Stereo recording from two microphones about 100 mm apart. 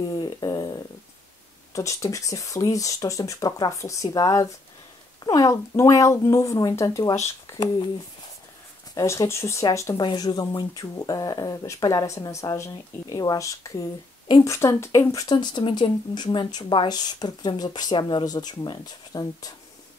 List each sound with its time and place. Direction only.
0.1 s a sound: 40° left (ahead or behind)
1.7 s speech: 30° left (ahead or behind)
8.9 s speech: 30° left (ahead or behind)
9.9 s speech: 45° left (ahead or behind)
15.2 s speech: 50° left (ahead or behind)